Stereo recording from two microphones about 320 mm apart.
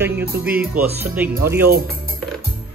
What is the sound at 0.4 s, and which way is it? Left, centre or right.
A man's voice, centre.